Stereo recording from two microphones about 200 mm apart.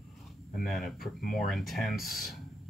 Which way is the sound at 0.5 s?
Centre (ahead or behind).